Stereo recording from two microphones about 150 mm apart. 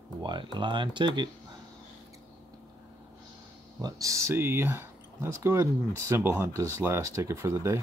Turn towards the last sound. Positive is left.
turn(degrees=-20)  # may be behind; listen again after turning